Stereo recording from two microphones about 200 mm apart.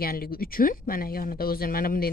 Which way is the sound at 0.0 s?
50° left (ahead or behind).